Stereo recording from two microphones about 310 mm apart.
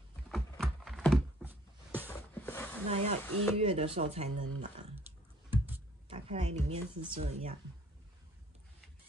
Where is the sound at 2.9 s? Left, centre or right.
Centre.